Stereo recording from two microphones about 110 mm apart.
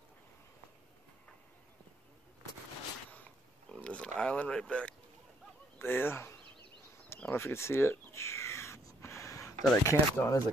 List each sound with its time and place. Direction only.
3.7 s a sound: 10° left (ahead or behind)
5.8 s speech: 20° left (ahead or behind)
7.2 s crow: 20° left (ahead or behind)
9.8 s speech: 25° left (ahead or behind)